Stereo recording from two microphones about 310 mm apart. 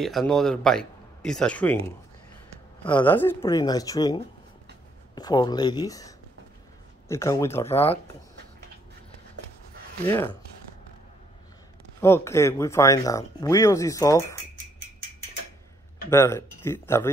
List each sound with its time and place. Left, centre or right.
0.0 s speech: centre
10.0 s speech: centre
12.0 s speech: centre
16.1 s speech: centre